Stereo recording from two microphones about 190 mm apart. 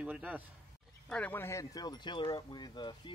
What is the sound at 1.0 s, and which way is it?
Speech, 5° left (ahead or behind).